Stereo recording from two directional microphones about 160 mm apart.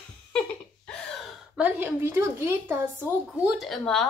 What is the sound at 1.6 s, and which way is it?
A woman's voice, 10° right (ahead or behind).